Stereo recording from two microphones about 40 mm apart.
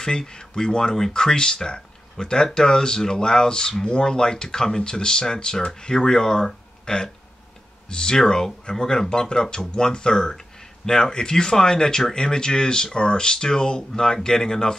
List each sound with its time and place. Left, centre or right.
0.0 s speech: centre